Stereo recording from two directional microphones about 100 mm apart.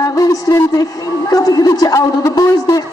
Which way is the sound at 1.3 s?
40° left (ahead or behind).